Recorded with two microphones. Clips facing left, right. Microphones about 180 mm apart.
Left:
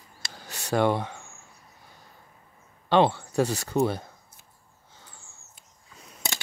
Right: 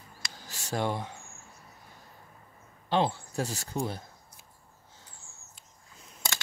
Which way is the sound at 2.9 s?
70° left (ahead or behind).